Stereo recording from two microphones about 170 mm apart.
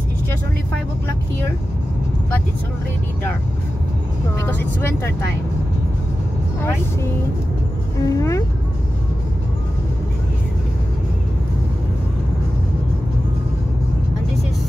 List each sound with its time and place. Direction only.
4.5 s speech: 15° left (ahead or behind)
6.6 s speech: 15° left (ahead or behind)